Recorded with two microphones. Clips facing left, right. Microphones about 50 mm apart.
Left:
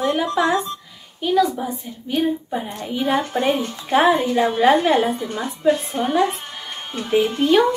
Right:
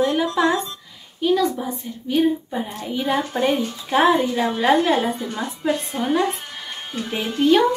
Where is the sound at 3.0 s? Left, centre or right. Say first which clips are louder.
Left 1 dB; centre.